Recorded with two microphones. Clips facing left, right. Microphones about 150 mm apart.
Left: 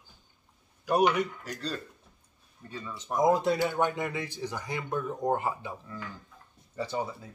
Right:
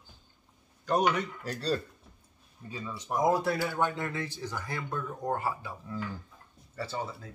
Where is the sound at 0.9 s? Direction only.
10° left (ahead or behind).